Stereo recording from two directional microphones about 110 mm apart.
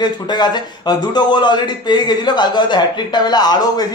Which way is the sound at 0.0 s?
40° left (ahead or behind).